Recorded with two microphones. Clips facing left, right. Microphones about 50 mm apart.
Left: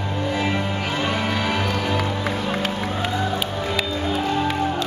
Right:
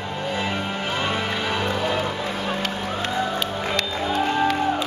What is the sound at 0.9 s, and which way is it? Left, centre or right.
Music, right.